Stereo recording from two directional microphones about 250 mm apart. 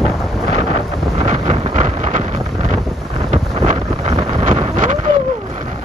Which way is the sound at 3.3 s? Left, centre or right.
Right.